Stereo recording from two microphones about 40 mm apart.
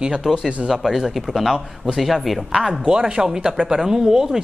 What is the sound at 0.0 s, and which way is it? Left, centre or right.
A woman's voice, centre.